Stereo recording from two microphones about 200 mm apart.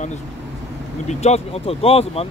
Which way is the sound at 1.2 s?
30° left (ahead or behind).